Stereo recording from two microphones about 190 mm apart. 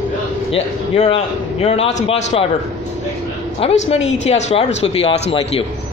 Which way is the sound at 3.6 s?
30° left (ahead or behind).